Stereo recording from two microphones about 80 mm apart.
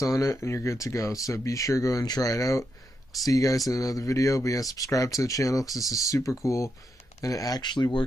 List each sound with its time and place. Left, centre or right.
0.0 s speech: left
7.6 s speech: left